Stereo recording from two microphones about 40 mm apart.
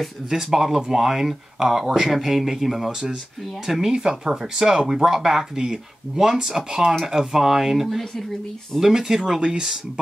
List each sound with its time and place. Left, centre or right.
0.0 s speech: centre
2.9 s speech: centre
9.4 s speech: right